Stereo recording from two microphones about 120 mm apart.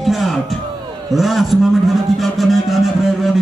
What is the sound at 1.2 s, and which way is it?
A man's voice, centre (ahead or behind).